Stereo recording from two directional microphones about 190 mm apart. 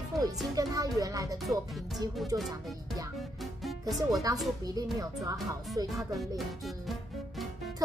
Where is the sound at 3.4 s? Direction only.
Centre (ahead or behind).